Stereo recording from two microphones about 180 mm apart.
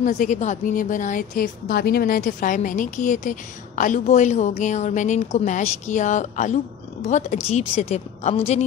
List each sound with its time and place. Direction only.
0.0 s a woman's voice: 45° left (ahead or behind)